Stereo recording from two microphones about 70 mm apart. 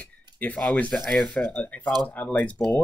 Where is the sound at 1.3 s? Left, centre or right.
Left.